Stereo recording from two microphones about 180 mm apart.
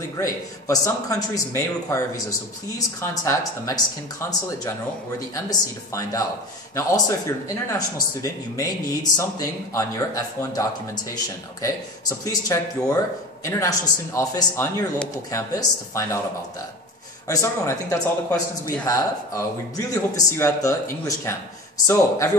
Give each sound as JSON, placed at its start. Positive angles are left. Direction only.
{"t": 0.2, "sound": "speech", "side_deg": 20}
{"t": 17.3, "sound": "speech", "side_deg": 15}